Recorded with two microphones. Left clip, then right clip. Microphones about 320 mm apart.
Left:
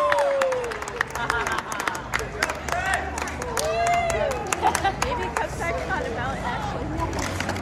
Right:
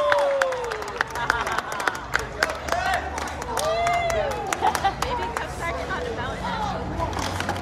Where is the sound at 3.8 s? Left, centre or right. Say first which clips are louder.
Even; left.